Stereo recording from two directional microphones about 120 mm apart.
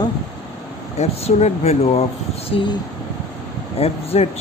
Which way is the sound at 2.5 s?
55° left (ahead or behind).